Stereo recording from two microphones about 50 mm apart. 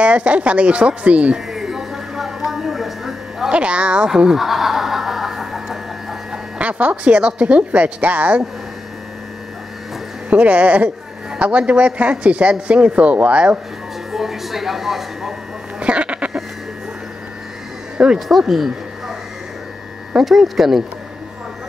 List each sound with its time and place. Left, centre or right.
0.0 s a man's voice: right
1.5 s a sound: centre
3.4 s speech: right
4.2 s fowl: centre
6.6 s a man's voice: right
10.3 s a man's voice: right
14.1 s speech: centre
15.8 s a sound: right
17.9 s speech: centre
18.5 s a sound: centre
20.2 s speech: centre